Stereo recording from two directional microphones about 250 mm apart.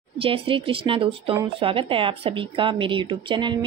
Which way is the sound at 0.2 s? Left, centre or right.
Right.